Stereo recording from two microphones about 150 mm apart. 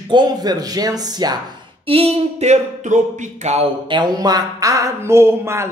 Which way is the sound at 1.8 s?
40° right (ahead or behind).